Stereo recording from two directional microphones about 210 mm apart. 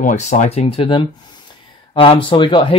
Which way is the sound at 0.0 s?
35° left (ahead or behind).